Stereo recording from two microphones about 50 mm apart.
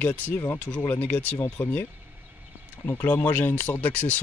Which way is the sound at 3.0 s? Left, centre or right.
Left.